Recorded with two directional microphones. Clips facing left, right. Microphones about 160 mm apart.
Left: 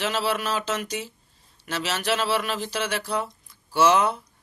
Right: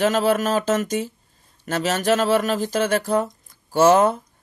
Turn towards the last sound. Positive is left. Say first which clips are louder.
# right 5 dB
turn(degrees=-45)  # may be behind; listen again after turning